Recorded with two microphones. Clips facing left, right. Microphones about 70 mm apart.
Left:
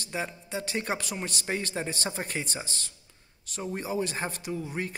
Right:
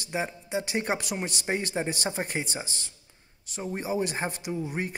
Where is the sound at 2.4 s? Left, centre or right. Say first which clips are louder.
Right 2 dB; centre.